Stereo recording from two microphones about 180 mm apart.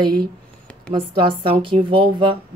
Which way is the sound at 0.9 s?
30° right (ahead or behind).